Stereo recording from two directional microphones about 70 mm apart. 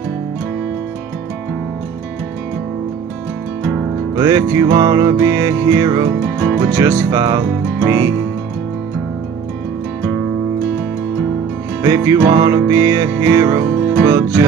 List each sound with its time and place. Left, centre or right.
4.1 s music: right
6.6 s music: right
7.1 s music: right
11.8 s music: right